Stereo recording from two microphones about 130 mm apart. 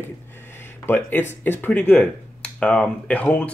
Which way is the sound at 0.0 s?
15° left (ahead or behind).